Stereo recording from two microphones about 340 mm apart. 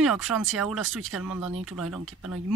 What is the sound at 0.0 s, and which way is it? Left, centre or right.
Speech, centre.